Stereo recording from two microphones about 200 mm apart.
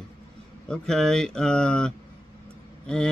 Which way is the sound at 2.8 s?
5° left (ahead or behind).